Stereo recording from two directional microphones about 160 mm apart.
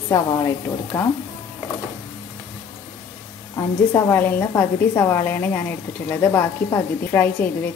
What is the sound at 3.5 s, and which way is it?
A woman's voice, 20° left (ahead or behind).